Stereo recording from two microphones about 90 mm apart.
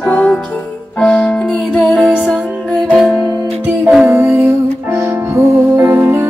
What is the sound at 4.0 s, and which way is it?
Music, 25° right (ahead or behind).